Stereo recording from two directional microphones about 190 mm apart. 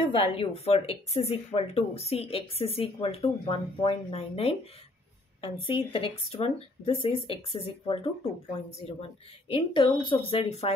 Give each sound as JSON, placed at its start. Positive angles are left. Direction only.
{"t": 0.4, "sound": "a woman's voice", "side_deg": 30}